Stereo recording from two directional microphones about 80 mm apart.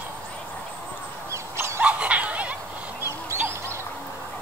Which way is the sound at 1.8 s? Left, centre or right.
Centre.